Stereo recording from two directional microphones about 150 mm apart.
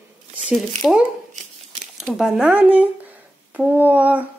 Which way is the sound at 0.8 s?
5° right (ahead or behind).